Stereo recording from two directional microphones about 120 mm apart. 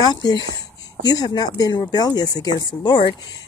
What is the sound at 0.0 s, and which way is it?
Speech, 35° left (ahead or behind).